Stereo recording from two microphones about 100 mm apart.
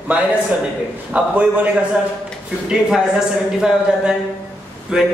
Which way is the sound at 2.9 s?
5° right (ahead or behind).